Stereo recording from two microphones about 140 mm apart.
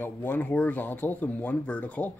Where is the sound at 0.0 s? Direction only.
15° left (ahead or behind).